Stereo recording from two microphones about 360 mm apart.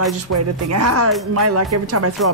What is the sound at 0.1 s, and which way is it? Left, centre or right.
Speech, right.